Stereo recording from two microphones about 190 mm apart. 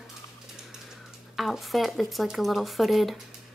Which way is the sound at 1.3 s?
Centre (ahead or behind).